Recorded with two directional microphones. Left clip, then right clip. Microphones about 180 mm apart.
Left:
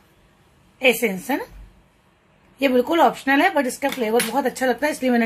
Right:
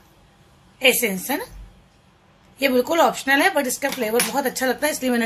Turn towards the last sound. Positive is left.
turn(degrees=30)  # may be behind; listen again after turning